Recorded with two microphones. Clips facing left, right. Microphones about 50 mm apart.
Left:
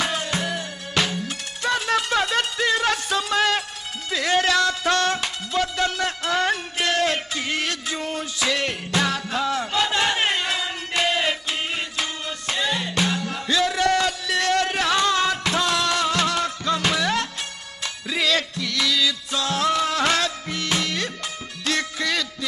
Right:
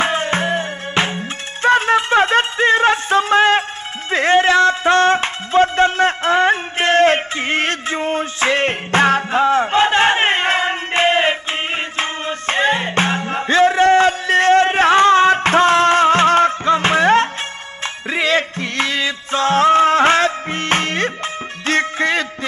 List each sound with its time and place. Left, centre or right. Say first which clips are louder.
0.0 s music: right 7 dB; right